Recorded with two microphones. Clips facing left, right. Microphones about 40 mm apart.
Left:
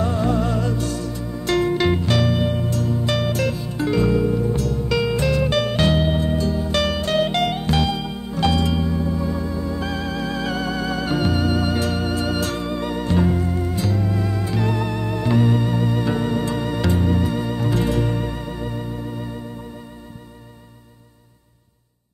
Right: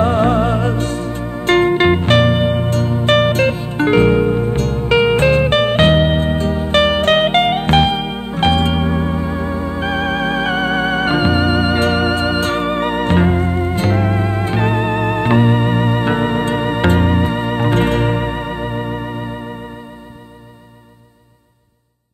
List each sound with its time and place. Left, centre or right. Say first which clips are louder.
0.0 s music: right 7 dB; right